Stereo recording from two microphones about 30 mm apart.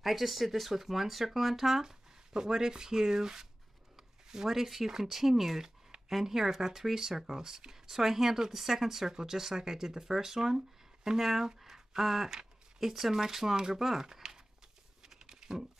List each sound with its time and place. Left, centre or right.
0.0 s speech: centre
1.8 s speech: centre
15.0 s typing: right